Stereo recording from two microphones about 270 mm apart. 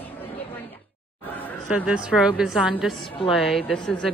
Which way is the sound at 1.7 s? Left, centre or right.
Centre.